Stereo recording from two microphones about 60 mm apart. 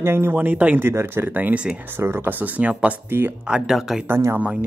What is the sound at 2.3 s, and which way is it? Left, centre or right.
Speech, right.